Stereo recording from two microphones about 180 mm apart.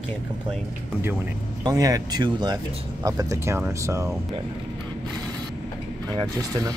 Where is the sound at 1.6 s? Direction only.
20° right (ahead or behind).